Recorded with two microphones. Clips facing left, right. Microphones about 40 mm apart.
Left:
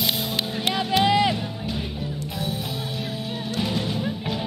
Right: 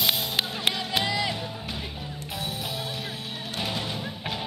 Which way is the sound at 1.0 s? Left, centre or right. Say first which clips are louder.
Left 11 dB; left.